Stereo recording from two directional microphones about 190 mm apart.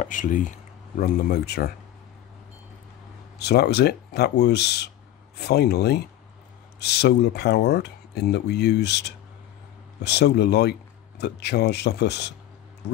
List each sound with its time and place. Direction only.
0.0 s speech: 40° left (ahead or behind)
3.3 s speech: 60° left (ahead or behind)